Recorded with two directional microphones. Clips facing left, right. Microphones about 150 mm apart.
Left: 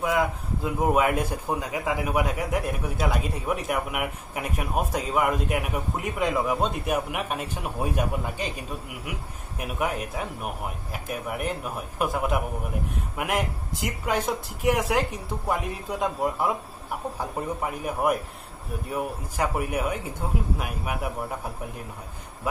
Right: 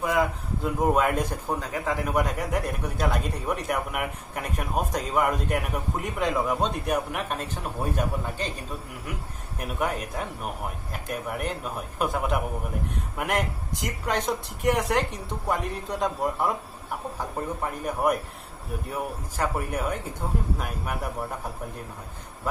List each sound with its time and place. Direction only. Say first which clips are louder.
0.0 s a man's voice: even; centre (ahead or behind)